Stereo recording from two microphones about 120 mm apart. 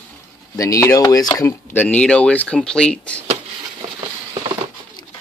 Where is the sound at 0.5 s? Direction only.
30° left (ahead or behind).